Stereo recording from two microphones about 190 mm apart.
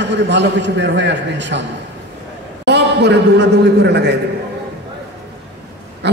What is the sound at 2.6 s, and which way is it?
A man's voice, 65° right (ahead or behind).